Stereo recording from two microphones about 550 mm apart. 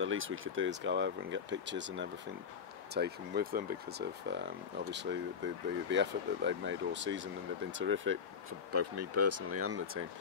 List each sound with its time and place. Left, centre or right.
0.0 s speech: right